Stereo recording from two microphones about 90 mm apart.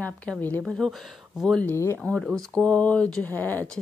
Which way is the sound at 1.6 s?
30° left (ahead or behind).